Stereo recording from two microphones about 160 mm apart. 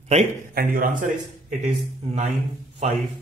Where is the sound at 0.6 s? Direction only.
60° right (ahead or behind).